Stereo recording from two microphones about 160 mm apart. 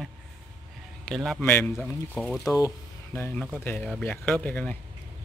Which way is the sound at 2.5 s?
15° left (ahead or behind).